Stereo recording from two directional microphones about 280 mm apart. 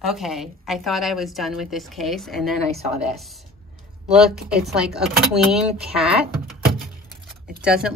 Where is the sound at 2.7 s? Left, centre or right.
Right.